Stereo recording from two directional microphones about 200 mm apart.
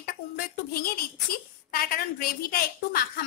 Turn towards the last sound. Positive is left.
turn(degrees=50)  # may be behind; listen again after turning